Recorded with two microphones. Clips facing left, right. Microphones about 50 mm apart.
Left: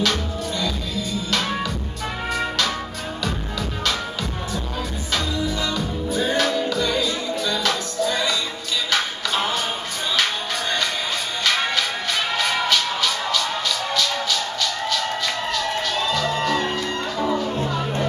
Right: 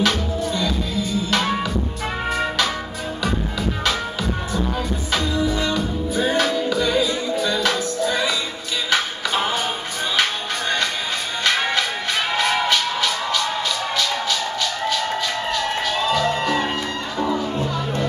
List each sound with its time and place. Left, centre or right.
0.0 s music: centre
3.8 s music: centre
11.4 s music: centre
17.2 s music: centre